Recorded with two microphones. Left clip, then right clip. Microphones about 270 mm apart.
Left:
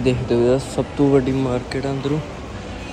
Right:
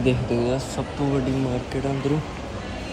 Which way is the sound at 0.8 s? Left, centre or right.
Left.